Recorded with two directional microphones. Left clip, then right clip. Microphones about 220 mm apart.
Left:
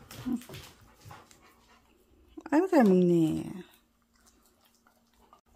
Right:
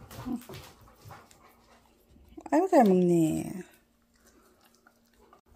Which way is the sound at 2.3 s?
10° left (ahead or behind).